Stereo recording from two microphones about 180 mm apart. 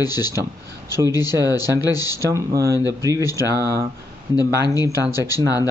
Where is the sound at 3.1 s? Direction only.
20° left (ahead or behind).